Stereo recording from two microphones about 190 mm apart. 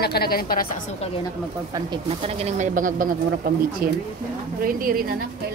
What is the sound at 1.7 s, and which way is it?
A woman's voice, 25° right (ahead or behind).